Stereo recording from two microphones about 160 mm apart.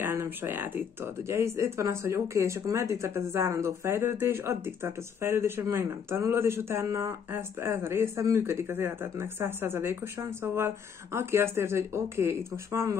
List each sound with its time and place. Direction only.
0.0 s speech: 15° right (ahead or behind)